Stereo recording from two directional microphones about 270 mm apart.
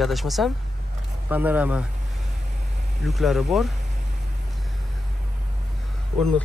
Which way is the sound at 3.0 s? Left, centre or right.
Centre.